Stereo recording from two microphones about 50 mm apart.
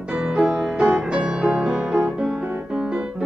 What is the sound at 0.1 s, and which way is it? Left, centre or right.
Music, centre.